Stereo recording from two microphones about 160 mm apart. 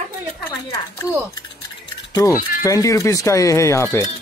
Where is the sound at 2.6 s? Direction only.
20° left (ahead or behind).